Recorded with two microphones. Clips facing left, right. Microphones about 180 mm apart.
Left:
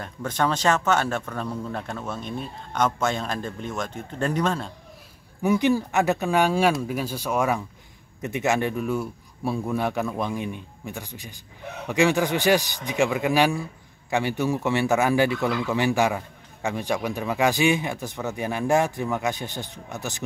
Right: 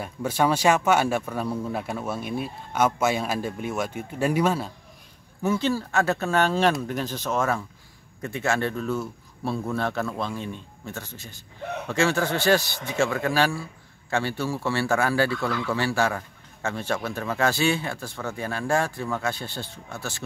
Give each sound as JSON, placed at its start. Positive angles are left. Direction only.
{"t": 0.0, "sound": "speech", "side_deg": -10}
{"t": 5.4, "sound": "speech", "side_deg": 15}